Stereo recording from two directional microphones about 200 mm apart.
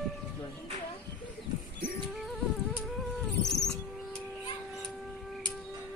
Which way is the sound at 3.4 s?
Centre (ahead or behind).